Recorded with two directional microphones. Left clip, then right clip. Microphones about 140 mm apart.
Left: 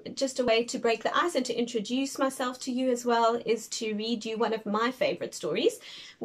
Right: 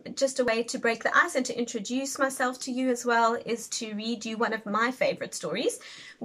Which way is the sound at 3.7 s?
25° right (ahead or behind).